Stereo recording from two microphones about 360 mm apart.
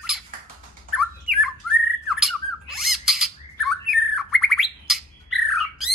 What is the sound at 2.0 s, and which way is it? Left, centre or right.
Squawk, centre.